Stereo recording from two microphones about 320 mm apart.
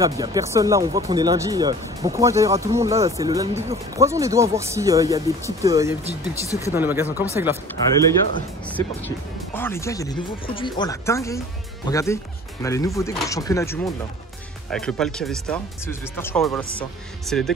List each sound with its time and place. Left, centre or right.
0.0 s speech: centre
6.4 s speech: centre
6.7 s speech: centre
8.6 s speech: centre